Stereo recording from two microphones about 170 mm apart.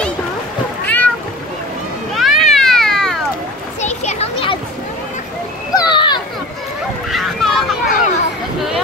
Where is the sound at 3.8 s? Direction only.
35° left (ahead or behind).